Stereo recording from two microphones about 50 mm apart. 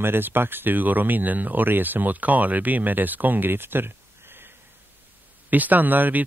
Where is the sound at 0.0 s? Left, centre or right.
Right.